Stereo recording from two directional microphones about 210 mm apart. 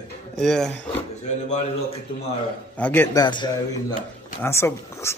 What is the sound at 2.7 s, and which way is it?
Speech, 10° left (ahead or behind).